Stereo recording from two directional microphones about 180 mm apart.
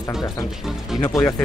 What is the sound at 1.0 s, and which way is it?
Speech, 15° left (ahead or behind).